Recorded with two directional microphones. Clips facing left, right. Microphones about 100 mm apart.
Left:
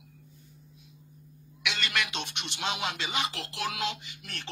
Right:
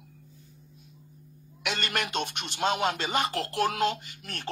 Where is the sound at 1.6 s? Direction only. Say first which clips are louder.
Right 1 dB; 45° right (ahead or behind).